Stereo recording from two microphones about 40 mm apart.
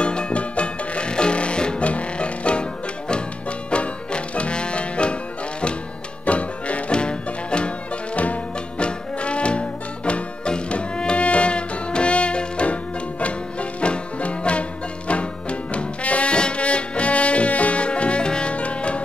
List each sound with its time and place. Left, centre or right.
0.0 s music: left
6.2 s music: left
15.7 s brass instrument: left